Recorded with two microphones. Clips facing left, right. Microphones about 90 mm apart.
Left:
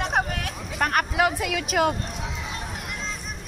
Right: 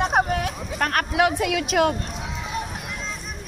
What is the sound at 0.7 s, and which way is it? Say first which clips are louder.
Speech: even; 10° left (ahead or behind).